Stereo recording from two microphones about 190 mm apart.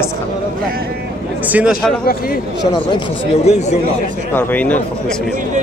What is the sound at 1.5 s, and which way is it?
Speech, 10° right (ahead or behind).